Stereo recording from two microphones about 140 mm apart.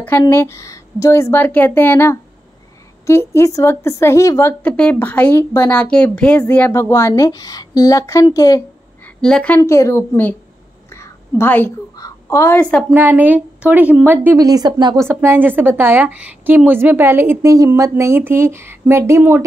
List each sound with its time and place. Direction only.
0.3 s a woman's voice: 20° left (ahead or behind)
9.0 s a woman's voice: 5° left (ahead or behind)
9.6 s a woman's voice: 20° left (ahead or behind)
10.9 s a sound: 20° left (ahead or behind)
12.9 s a woman's voice: 15° right (ahead or behind)
14.4 s speech: 30° right (ahead or behind)
15.0 s a woman's voice: 15° right (ahead or behind)